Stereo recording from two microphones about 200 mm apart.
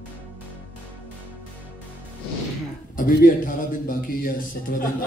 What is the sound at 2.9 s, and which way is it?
A man's voice, 45° left (ahead or behind).